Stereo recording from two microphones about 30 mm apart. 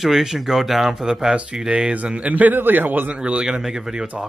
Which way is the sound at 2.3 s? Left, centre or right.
Right.